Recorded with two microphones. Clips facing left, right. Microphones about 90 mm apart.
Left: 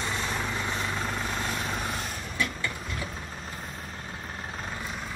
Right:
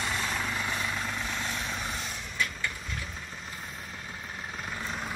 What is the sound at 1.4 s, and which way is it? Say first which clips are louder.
Vehicle: left 3 dB; 45° left (ahead or behind).